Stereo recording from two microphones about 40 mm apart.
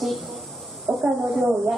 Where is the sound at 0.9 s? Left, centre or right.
Right.